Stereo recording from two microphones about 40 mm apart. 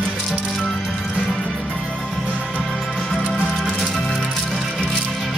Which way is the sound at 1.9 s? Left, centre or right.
Left.